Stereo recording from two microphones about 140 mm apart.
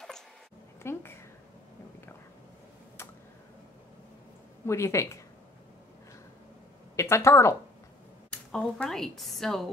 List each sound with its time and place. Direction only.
0.8 s a sound: 20° left (ahead or behind)
4.6 s speech: 20° left (ahead or behind)
7.0 s a woman's voice: 20° left (ahead or behind)
8.3 s speech: 5° left (ahead or behind)